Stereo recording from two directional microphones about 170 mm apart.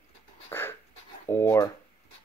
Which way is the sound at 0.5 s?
15° left (ahead or behind).